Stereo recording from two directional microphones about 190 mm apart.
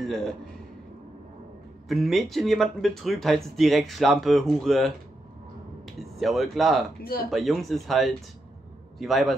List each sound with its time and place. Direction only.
0.0 s speech: centre (ahead or behind)
1.9 s speech: centre (ahead or behind)
7.0 s speech: 50° left (ahead or behind)
7.2 s a man's voice: centre (ahead or behind)